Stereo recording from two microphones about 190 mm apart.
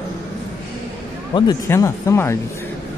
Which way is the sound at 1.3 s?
20° left (ahead or behind).